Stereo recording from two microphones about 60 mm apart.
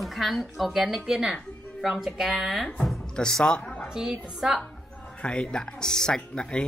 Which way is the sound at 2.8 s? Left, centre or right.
Centre.